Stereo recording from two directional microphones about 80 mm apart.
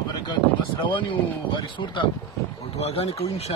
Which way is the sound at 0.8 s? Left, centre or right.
Left.